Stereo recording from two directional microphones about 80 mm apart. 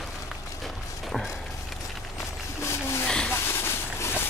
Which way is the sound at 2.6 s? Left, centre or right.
Left.